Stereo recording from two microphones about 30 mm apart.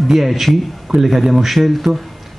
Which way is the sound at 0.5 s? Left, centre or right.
Left.